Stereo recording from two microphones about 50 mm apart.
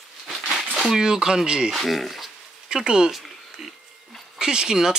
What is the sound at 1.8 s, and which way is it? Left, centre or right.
Speech, centre.